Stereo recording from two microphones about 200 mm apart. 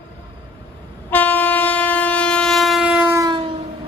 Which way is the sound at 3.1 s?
20° right (ahead or behind).